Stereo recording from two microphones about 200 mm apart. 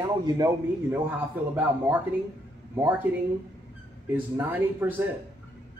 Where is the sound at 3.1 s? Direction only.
10° right (ahead or behind).